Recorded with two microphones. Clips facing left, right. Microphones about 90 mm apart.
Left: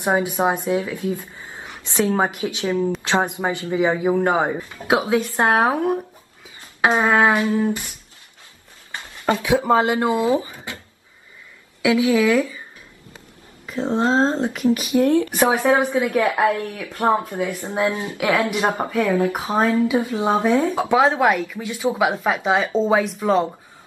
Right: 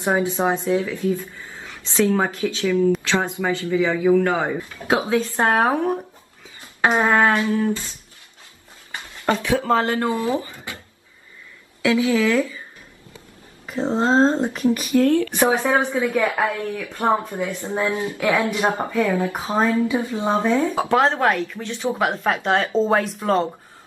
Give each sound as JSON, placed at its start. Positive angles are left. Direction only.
{"t": 0.0, "sound": "a woman's voice", "side_deg": 15}
{"t": 9.4, "sound": "speech", "side_deg": 15}
{"t": 11.8, "sound": "speech", "side_deg": 15}
{"t": 13.9, "sound": "speech", "side_deg": -30}
{"t": 14.8, "sound": "speech", "side_deg": 15}